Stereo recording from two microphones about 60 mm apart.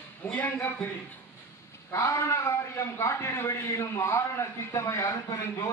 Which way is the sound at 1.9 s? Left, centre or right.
Left.